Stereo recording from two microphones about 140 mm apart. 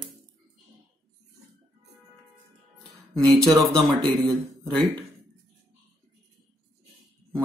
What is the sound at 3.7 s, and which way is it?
Speech, 30° right (ahead or behind).